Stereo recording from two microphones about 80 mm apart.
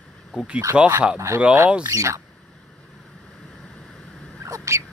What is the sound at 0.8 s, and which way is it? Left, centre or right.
Speech, centre.